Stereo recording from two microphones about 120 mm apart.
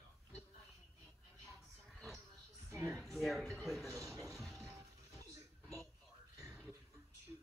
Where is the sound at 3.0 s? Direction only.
Centre (ahead or behind).